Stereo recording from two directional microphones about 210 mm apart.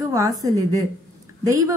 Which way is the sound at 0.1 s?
15° right (ahead or behind).